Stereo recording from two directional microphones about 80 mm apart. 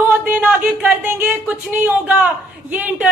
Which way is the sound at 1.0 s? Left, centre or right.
Right.